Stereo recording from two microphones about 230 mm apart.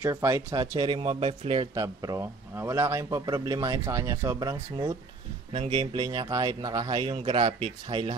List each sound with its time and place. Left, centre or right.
0.0 s speech: centre